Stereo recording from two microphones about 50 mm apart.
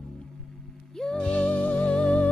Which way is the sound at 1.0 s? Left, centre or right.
Centre.